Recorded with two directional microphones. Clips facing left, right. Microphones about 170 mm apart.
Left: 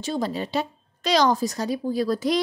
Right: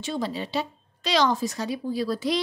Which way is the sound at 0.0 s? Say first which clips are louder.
Left 3 dB; 40° left (ahead or behind).